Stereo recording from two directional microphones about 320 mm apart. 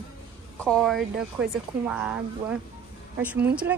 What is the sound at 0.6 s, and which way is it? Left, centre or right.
A woman's voice, centre.